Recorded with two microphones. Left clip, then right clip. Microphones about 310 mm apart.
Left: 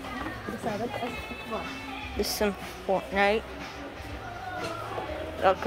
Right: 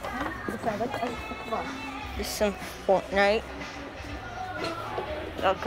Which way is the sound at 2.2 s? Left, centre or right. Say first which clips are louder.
Even; centre.